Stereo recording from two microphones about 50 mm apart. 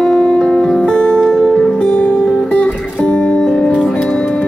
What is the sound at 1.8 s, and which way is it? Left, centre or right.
Music, left.